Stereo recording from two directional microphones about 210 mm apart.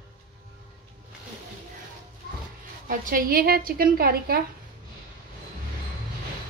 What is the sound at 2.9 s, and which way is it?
A woman's voice, 40° right (ahead or behind).